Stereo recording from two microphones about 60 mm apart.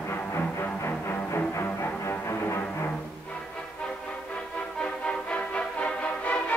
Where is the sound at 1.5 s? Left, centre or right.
Left.